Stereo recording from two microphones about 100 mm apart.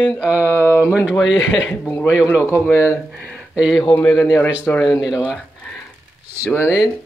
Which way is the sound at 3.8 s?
15° left (ahead or behind).